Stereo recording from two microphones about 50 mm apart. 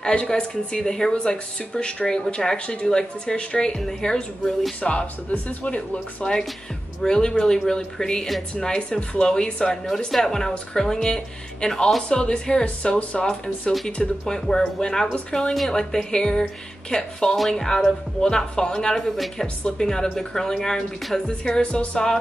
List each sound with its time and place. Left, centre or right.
0.0 s a woman's voice: centre
5.3 s speech: left
7.0 s a woman's voice: centre
19.4 s a woman's voice: centre
21.3 s a woman's voice: centre